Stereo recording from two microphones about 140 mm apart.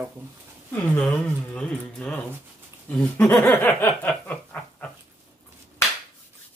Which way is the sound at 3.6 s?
15° left (ahead or behind).